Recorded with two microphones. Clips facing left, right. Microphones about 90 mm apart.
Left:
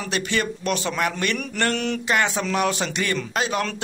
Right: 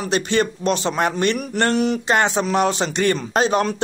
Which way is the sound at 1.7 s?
15° right (ahead or behind).